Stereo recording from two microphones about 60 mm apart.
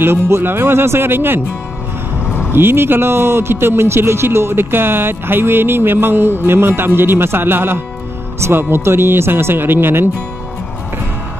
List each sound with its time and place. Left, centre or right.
0.0 s speech: right
2.5 s speech: right